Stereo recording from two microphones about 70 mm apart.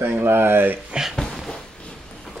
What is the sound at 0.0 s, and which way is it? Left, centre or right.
Speech, right.